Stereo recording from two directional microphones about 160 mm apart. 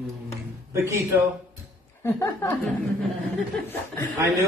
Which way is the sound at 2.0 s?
15° left (ahead or behind).